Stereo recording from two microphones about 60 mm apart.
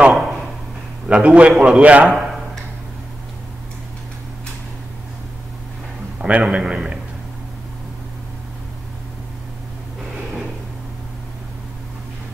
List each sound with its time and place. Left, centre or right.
0.1 s a sound: centre
1.0 s a man's voice: right
6.2 s a man's voice: centre